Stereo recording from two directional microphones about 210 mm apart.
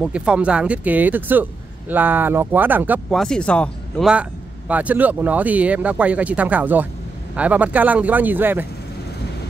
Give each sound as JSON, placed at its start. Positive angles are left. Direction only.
{"t": 0.0, "sound": "speech", "side_deg": -5}
{"t": 3.1, "sound": "speech", "side_deg": 0}